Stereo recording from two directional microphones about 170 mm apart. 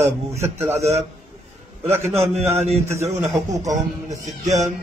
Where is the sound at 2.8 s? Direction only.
15° right (ahead or behind).